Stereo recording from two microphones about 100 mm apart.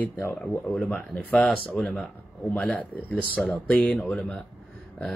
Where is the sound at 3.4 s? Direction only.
5° left (ahead or behind).